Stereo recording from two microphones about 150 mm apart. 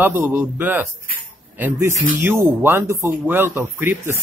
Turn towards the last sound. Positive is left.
turn(degrees=-15)  # may be behind; listen again after turning